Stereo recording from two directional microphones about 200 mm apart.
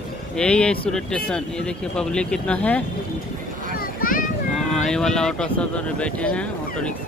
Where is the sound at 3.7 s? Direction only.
45° left (ahead or behind).